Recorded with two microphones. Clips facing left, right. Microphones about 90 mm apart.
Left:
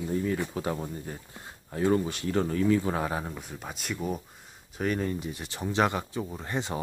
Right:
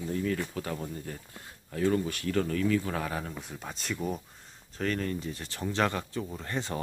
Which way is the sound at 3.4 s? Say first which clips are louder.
Left 1 dB; 5° left (ahead or behind).